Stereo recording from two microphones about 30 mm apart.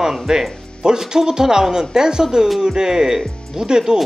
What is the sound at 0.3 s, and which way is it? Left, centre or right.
Speech, right.